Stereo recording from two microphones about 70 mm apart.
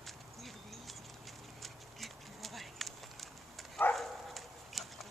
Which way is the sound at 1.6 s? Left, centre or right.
Centre.